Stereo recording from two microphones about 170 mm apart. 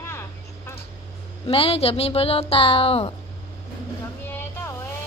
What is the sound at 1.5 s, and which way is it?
A woman's voice, 35° left (ahead or behind).